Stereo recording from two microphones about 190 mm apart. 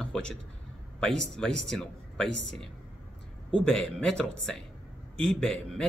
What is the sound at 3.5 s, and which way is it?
Speech, 5° left (ahead or behind).